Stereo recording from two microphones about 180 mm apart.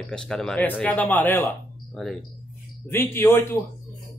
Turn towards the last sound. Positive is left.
turn(degrees=10)  # may be behind; listen again after turning